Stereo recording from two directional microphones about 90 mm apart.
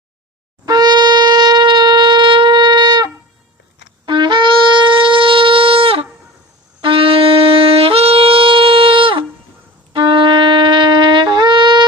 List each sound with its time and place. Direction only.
0.7 s shofar: 50° right (ahead or behind); by 6.0 s 90° right
6.8 s wind instrument: 80° right
9.9 s shofar: 65° right (ahead or behind)